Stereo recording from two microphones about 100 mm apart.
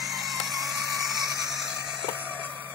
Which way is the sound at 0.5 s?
35° right (ahead or behind).